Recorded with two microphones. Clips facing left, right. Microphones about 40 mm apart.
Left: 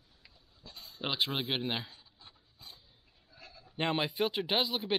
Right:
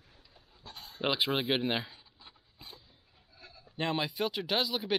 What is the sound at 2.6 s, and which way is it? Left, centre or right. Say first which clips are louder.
Dog: right 2 dB; right.